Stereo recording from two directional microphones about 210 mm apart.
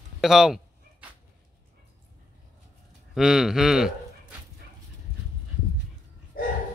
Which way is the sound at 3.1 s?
Centre (ahead or behind).